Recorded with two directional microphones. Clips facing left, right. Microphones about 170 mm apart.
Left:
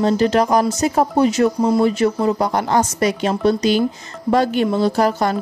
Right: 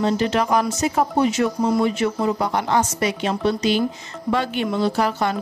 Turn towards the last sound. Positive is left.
turn(degrees=40)  # may be behind; listen again after turning